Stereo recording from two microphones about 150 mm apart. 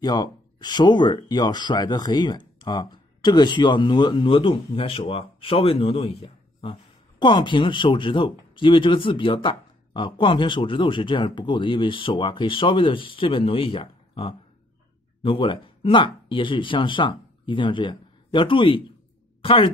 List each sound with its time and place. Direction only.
0.0 s speech: 30° left (ahead or behind)